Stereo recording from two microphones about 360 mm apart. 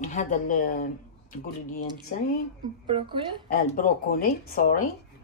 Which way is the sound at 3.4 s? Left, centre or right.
Left.